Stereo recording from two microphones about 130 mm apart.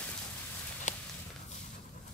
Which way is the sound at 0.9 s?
70° left (ahead or behind).